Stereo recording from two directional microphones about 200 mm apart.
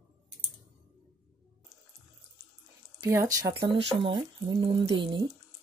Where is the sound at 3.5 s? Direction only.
30° right (ahead or behind).